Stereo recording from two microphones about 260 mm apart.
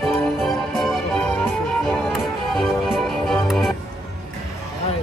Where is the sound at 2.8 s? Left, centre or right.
Centre.